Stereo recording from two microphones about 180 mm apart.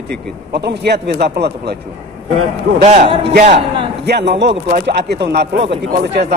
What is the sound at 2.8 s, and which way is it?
Speech, 35° right (ahead or behind).